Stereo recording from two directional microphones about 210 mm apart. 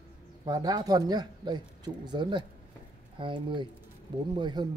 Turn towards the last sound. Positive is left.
turn(degrees=-20)  # may be behind; listen again after turning